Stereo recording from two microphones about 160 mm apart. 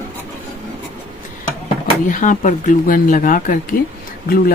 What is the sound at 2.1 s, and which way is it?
Speech, 55° left (ahead or behind).